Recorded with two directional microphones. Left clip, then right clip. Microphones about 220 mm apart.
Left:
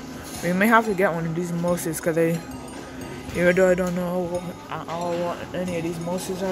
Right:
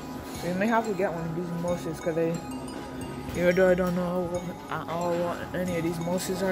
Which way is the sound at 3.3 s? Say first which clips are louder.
Left 4 dB; 15° left (ahead or behind).